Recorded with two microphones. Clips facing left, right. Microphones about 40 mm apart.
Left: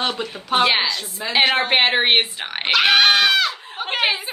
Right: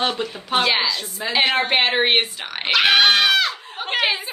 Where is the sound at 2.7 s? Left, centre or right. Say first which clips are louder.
Even; centre.